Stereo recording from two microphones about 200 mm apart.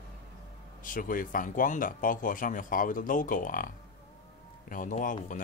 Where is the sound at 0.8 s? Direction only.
45° left (ahead or behind).